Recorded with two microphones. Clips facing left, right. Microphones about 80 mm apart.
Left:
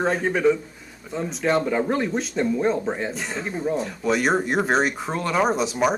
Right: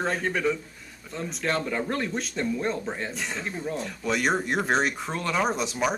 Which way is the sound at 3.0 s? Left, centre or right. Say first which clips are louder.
Left 4 dB; centre.